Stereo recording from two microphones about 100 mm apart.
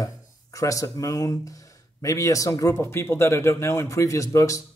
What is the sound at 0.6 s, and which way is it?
A man's voice, 35° left (ahead or behind).